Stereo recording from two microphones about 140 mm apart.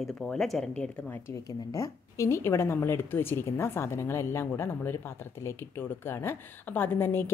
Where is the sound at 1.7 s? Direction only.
20° left (ahead or behind).